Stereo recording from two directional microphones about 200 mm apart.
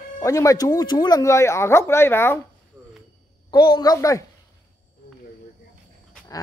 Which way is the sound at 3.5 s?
20° left (ahead or behind).